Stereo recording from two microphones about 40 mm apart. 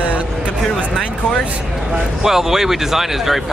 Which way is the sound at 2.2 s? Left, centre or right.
Centre.